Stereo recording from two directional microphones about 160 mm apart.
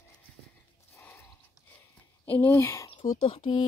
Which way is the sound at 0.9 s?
15° left (ahead or behind).